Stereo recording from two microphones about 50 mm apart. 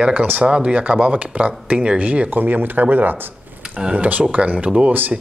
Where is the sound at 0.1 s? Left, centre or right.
Right.